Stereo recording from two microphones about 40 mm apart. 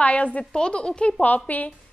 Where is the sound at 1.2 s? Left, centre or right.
Left.